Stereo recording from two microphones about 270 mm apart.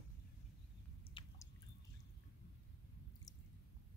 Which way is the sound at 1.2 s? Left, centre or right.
Centre.